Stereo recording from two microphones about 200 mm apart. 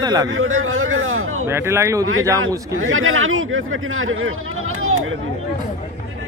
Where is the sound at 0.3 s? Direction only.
85° right.